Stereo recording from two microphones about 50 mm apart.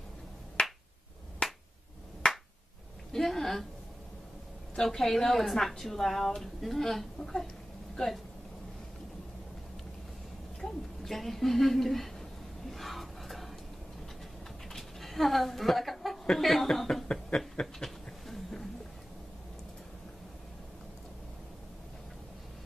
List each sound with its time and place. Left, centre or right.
0.6 s finger snapping: left
3.1 s a woman's voice: centre
4.8 s a woman's voice: centre
10.6 s a woman's voice: centre
12.7 s a sound: centre
14.7 s speech: centre
16.8 s speech: centre
17.8 s a sound: centre